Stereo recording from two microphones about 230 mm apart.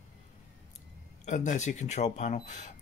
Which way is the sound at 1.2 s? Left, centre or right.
Left.